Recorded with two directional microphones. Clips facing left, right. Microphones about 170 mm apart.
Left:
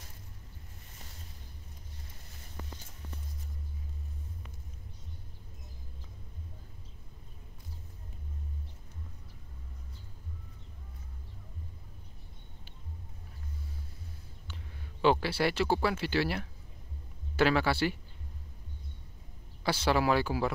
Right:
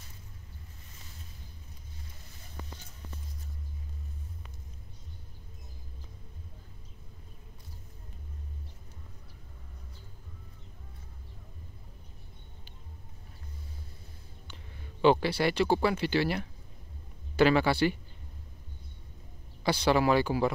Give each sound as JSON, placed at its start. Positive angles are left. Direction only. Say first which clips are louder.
{"t": 14.5, "sound": "speech", "louder": "left 2 dB", "side_deg": 0}
{"t": 19.6, "sound": "speech", "louder": "right 3 dB", "side_deg": 5}